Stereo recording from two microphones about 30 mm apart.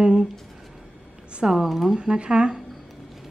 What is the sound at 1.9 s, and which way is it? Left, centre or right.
Speech, right.